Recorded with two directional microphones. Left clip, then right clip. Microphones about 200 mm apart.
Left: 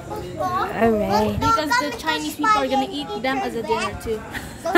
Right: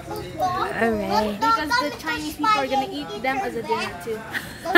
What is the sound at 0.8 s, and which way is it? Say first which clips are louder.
Speech: left 6 dB; 10° left (ahead or behind).